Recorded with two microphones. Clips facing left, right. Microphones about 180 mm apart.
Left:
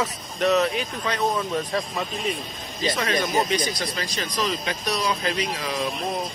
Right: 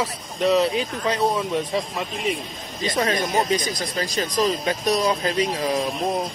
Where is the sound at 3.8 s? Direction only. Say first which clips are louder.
Right 4 dB; 40° right (ahead or behind).